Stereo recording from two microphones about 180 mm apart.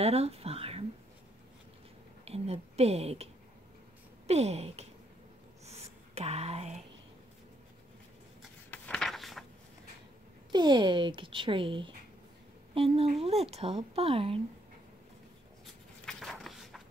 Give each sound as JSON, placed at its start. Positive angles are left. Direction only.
{"t": 0.0, "sound": "a sound", "side_deg": -35}
{"t": 2.2, "sound": "a woman's voice", "side_deg": -35}
{"t": 4.3, "sound": "speech", "side_deg": -35}
{"t": 5.7, "sound": "whispering", "side_deg": -35}
{"t": 8.6, "sound": "a sound", "side_deg": 10}
{"t": 10.5, "sound": "a child's voice", "side_deg": -25}
{"t": 15.6, "sound": "writing", "side_deg": 0}